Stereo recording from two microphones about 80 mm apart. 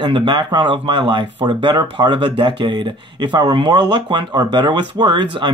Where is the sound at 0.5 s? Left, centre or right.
Right.